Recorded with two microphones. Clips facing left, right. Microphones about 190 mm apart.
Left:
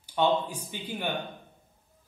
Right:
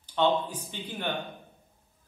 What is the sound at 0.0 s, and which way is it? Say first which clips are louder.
Speech: even; 10° left (ahead or behind).